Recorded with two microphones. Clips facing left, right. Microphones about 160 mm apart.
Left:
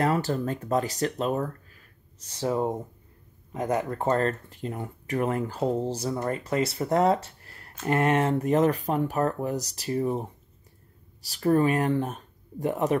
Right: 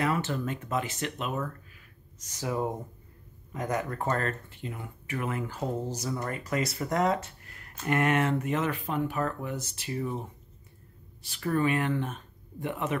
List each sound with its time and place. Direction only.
0.0 s speech: 35° left (ahead or behind)